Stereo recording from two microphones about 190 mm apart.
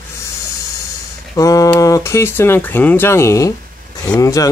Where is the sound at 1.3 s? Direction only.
20° left (ahead or behind).